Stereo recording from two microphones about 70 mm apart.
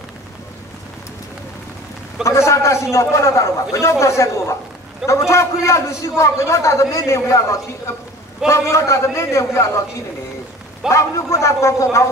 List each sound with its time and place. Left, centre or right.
2.2 s a man's voice: left